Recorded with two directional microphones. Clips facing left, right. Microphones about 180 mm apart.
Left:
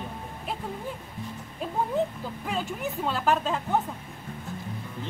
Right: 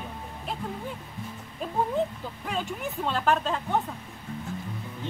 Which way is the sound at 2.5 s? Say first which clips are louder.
Left 1 dB; 5° left (ahead or behind).